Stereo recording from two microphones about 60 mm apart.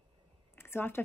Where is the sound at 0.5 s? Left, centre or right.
Left.